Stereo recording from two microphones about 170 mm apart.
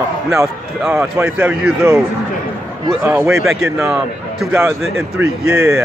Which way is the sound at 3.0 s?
10° right (ahead or behind).